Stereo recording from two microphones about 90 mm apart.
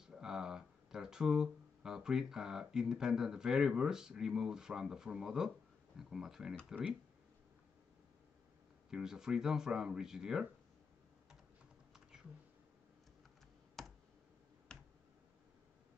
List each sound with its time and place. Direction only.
0.0 s speech: 5° right (ahead or behind)
8.9 s speech: 5° right (ahead or behind)
13.8 s a sound: 5° left (ahead or behind)